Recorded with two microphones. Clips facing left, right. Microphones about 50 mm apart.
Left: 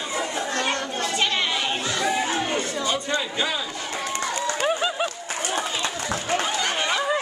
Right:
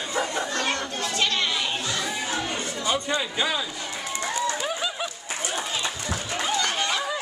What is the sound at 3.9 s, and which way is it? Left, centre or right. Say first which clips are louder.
Run: left 2 dB; left.